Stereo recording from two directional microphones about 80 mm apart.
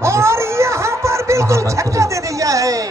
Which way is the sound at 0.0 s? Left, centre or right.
Right.